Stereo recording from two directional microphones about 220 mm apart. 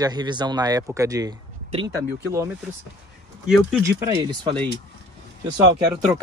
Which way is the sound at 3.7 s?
10° right (ahead or behind).